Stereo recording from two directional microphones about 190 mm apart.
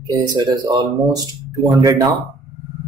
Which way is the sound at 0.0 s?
20° right (ahead or behind).